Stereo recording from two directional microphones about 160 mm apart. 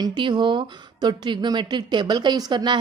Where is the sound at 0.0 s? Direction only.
30° right (ahead or behind).